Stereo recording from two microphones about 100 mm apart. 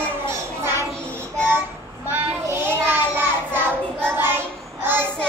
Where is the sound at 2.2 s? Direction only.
20° right (ahead or behind).